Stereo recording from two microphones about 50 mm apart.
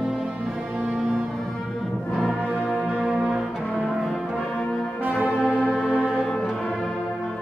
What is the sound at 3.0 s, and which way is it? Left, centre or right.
Music, centre.